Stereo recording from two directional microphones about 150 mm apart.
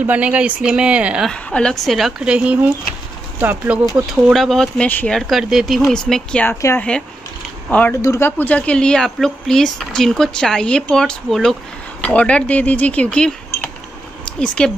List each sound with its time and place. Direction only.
0.0 s speech: 10° right (ahead or behind)
1.3 s speech: 5° left (ahead or behind)
6.6 s speech: 15° left (ahead or behind)
8.0 s speech: 20° left (ahead or behind)